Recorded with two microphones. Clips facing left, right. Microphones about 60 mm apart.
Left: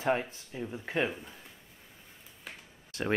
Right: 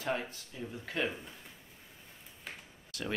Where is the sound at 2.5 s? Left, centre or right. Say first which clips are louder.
Even; centre.